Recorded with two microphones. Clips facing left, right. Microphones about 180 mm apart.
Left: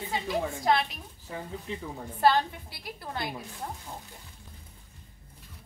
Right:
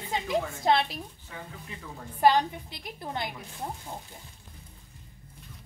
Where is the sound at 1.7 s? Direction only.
30° left (ahead or behind).